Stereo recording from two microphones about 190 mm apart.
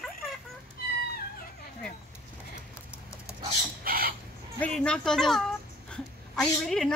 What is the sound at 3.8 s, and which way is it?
Chicken, 50° right (ahead or behind).